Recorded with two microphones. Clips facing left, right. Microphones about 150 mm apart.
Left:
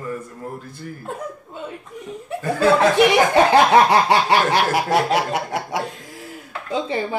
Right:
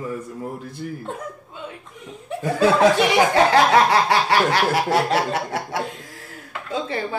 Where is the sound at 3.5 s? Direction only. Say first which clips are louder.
Left 2 dB; 20° left (ahead or behind).